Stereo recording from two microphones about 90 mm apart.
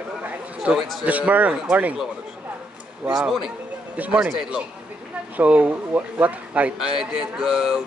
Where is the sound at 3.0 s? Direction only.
5° right (ahead or behind).